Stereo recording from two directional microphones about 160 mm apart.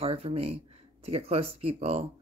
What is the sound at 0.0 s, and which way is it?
A woman's voice, 40° right (ahead or behind).